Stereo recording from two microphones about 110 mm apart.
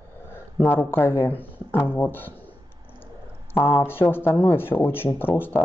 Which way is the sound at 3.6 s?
20° left (ahead or behind).